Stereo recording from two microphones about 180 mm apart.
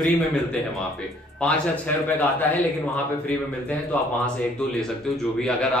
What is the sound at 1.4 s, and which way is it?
Speech, 5° left (ahead or behind).